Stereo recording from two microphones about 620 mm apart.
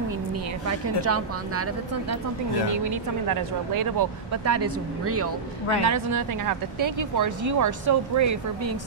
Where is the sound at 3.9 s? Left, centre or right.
Right.